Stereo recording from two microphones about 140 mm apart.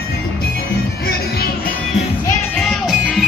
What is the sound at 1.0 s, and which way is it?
Music, 90° left.